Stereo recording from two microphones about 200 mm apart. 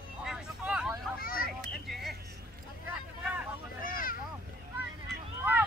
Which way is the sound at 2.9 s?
5° right (ahead or behind).